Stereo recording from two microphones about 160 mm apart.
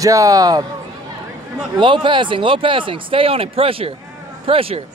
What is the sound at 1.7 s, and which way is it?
Speech, 30° right (ahead or behind).